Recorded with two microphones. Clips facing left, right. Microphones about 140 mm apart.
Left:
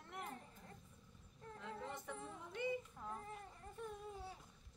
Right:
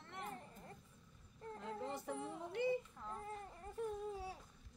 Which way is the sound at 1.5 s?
35° right (ahead or behind).